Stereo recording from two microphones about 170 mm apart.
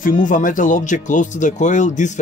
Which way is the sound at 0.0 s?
50° left (ahead or behind).